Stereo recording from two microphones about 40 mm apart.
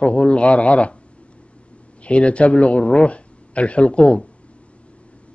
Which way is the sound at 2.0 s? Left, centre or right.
Left.